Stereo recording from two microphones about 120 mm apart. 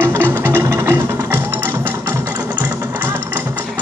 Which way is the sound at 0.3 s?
20° right (ahead or behind).